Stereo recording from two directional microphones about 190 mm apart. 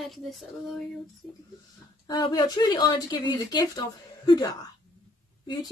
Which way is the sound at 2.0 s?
25° left (ahead or behind).